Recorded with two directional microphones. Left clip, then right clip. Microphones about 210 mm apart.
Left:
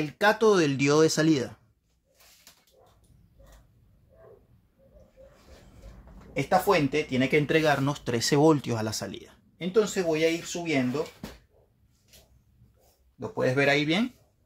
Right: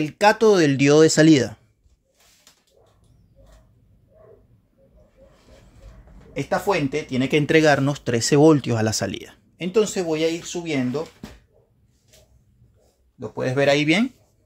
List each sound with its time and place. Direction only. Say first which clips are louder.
0.2 s speech: right 6 dB; 30° right (ahead or behind)
6.3 s speech: right 1 dB; 20° right (ahead or behind); by 10.8 s 40° right (ahead or behind)
13.4 s speech: right 4 dB; 30° right (ahead or behind)